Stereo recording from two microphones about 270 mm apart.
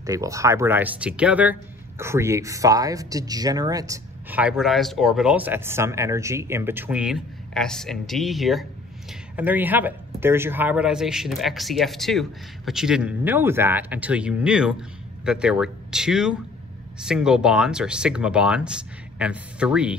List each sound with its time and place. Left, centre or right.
0.0 s speech: centre